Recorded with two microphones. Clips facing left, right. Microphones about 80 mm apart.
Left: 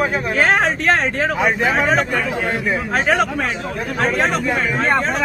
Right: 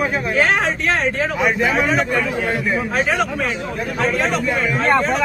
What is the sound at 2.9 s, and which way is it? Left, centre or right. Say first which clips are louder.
Speech: left 5 dB; left.